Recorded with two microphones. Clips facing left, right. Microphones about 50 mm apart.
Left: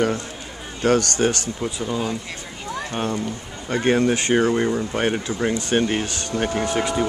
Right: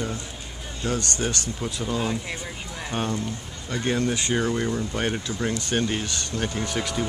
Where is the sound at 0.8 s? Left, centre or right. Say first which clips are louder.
Left 9 dB; left.